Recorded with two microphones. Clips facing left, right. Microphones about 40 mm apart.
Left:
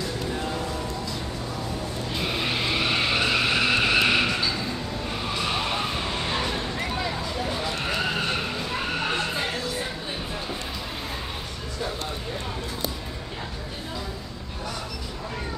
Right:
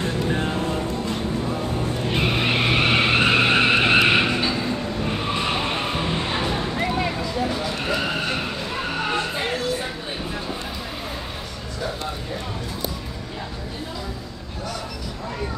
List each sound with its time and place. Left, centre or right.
0.0 s music: right
2.0 s skidding: right
6.8 s a sound: right